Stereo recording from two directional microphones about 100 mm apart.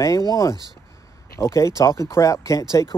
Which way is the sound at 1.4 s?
30° left (ahead or behind).